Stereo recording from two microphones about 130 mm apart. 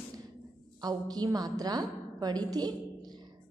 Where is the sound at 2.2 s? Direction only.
30° right (ahead or behind).